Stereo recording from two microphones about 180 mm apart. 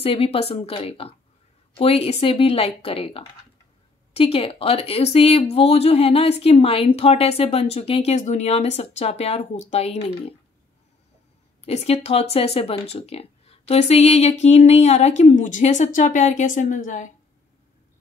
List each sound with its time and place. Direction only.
0.0 s speech: 30° left (ahead or behind)
11.6 s speech: 35° left (ahead or behind)